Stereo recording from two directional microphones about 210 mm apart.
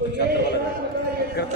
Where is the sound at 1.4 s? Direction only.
50° left (ahead or behind).